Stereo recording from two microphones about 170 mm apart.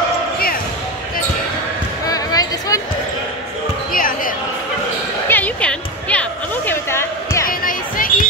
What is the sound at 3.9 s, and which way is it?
Basketball bounce, 55° left (ahead or behind).